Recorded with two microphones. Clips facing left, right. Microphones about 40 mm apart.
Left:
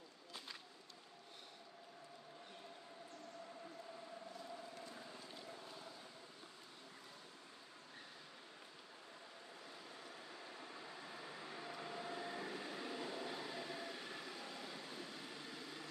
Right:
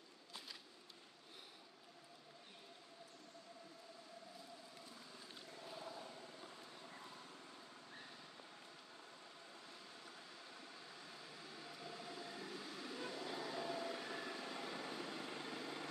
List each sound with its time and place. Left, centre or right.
5.3 s boat: centre
11.1 s vehicle: left; by 14.2 s centre
14.2 s train: centre
15.0 s vehicle: right